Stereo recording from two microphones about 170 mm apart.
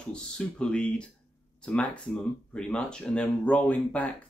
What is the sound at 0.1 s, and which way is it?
Speech, 5° left (ahead or behind).